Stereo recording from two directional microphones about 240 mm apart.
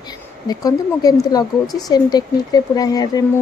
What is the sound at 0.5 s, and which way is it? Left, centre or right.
Speech, centre.